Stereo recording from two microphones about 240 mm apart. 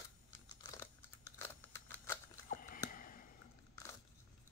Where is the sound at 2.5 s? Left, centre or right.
Left.